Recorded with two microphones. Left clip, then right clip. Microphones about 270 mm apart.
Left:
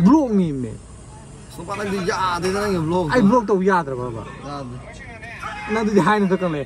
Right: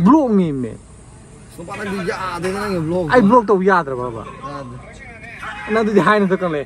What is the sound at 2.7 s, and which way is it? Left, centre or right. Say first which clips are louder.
Speech: right 1 dB; centre.